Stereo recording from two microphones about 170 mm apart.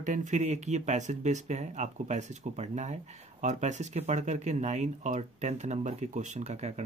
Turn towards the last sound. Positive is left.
turn(degrees=-40)  # may be behind; listen again after turning